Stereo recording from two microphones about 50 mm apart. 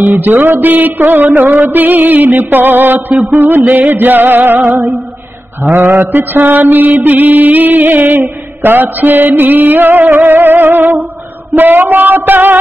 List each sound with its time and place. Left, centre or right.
0.0 s mantra: right